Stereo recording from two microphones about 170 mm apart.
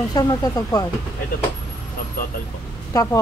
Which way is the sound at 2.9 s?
20° left (ahead or behind).